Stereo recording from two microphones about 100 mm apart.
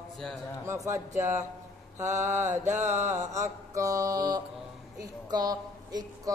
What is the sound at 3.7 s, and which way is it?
Speech, 35° right (ahead or behind).